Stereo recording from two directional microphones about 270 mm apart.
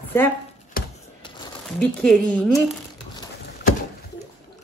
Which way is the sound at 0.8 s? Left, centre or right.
Left.